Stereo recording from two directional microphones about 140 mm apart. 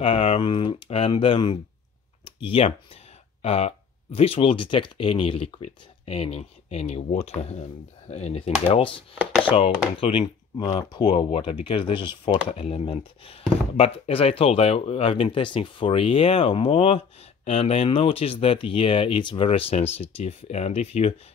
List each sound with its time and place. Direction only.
0.0 s speech: 45° left (ahead or behind)